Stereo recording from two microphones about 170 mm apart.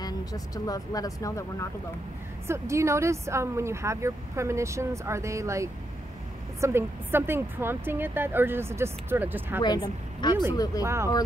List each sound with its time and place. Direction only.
0.0 s speech: 20° left (ahead or behind)
2.4 s speech: 15° right (ahead or behind)
9.6 s speech: 25° left (ahead or behind)